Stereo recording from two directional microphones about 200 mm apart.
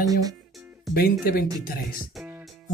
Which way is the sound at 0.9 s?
50° left (ahead or behind).